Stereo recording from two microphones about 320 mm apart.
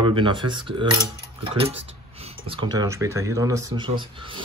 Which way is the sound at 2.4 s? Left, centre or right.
Centre.